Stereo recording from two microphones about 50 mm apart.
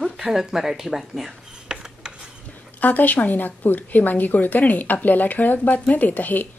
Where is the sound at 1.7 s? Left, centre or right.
Centre.